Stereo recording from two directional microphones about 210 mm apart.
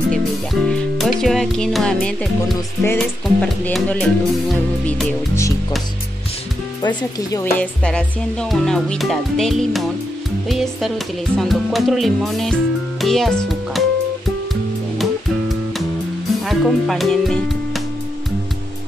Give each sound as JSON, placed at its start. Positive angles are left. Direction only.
{"t": 0.1, "sound": "music", "side_deg": 0}
{"t": 7.2, "sound": "a woman's voice", "side_deg": 15}
{"t": 7.8, "sound": "music", "side_deg": 5}
{"t": 16.4, "sound": "speech", "side_deg": 0}